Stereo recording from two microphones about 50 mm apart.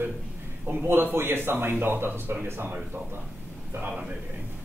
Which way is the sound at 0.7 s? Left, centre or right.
Right.